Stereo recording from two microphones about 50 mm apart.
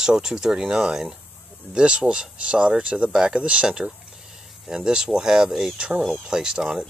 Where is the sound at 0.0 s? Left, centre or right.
Centre.